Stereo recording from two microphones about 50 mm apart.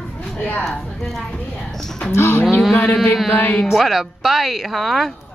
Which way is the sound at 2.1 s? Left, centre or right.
Left.